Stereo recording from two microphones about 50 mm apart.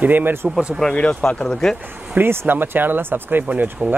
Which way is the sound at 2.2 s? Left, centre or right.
Right.